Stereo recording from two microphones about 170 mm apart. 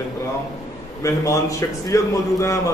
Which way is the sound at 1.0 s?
20° left (ahead or behind).